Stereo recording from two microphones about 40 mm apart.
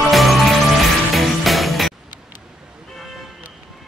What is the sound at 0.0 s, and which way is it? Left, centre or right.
Music, centre.